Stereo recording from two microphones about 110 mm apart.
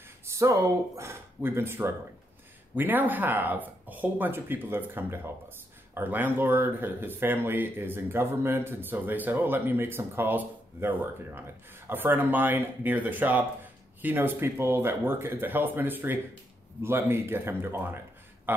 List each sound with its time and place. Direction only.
0.4 s speech: 25° right (ahead or behind)